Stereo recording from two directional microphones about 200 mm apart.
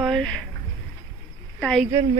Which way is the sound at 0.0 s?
5° left (ahead or behind).